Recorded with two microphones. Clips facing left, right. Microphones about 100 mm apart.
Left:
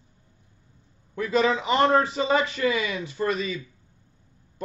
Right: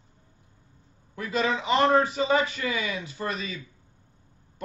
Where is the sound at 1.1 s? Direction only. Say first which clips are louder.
Left 4 dB; 30° left (ahead or behind).